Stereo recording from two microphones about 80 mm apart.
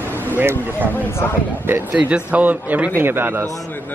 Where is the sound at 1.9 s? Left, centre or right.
Centre.